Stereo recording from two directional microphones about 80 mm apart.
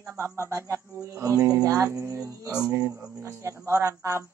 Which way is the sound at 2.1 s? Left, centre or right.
Right.